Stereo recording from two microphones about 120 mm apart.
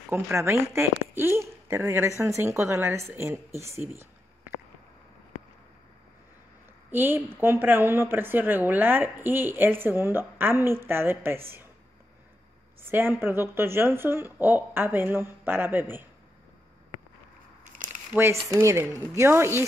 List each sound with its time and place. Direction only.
0.1 s a woman's voice: 20° right (ahead or behind)
6.9 s a woman's voice: 15° right (ahead or behind)
12.8 s a woman's voice: 20° right (ahead or behind)
17.7 s crumpling: 90° right
18.1 s a woman's voice: 20° right (ahead or behind)